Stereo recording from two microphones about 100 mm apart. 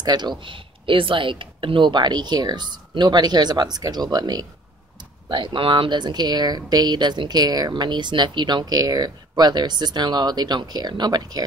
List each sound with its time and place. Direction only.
0.0 s speech: 45° right (ahead or behind)
5.3 s speech: 55° right (ahead or behind)